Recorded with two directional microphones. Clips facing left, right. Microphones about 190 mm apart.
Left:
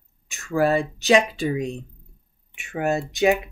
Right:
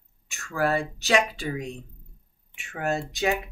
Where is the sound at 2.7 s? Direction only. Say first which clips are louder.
Left 5 dB; 15° left (ahead or behind).